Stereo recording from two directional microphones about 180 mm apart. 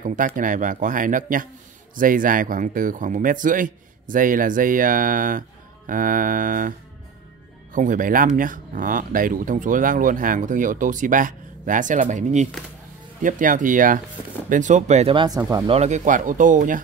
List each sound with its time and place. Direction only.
0.0 s speech: 45° right (ahead or behind)
7.7 s speech: 50° right (ahead or behind)
15.1 s speech: 20° right (ahead or behind)
15.7 s speech: 40° right (ahead or behind)